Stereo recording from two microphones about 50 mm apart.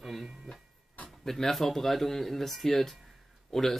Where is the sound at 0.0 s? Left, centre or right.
Centre.